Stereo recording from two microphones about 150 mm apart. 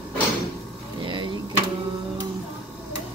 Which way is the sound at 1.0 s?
30° right (ahead or behind).